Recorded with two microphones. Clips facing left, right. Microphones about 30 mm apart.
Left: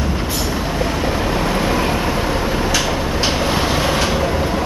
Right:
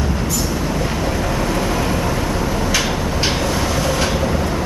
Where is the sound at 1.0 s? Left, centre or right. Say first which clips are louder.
Left 1 dB; left.